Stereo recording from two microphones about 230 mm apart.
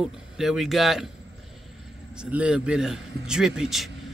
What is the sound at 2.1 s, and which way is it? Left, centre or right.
A man's voice, centre.